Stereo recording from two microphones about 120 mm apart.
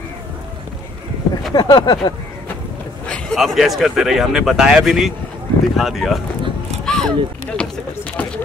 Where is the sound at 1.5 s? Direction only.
35° left (ahead or behind).